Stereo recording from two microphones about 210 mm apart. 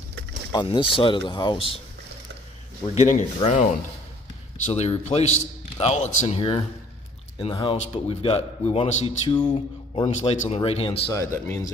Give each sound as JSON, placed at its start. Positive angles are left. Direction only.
{"t": 0.5, "sound": "a man's voice", "side_deg": 20}
{"t": 2.9, "sound": "a man's voice", "side_deg": 35}
{"t": 4.6, "sound": "a man's voice", "side_deg": 30}
{"t": 11.1, "sound": "speech", "side_deg": 15}